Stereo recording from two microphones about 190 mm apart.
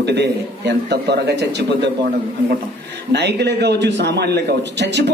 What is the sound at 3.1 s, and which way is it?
A man's voice, 65° right (ahead or behind).